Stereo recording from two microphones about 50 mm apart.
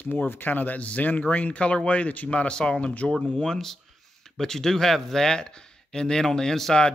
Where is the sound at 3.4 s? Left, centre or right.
Centre.